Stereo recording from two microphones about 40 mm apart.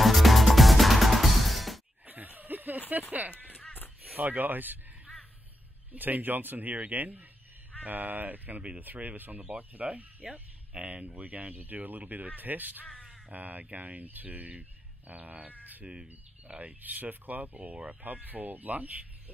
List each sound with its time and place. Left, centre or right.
0.0 s music: centre
2.0 s snicker: right
3.1 s speech: right
3.3 s a sound: left
4.2 s speech: right
5.9 s speech: right
11.0 s speech: right
15.8 s speech: right
16.8 s speech: right